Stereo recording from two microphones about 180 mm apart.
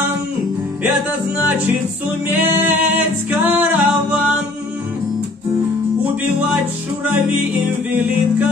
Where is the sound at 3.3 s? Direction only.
10° right (ahead or behind).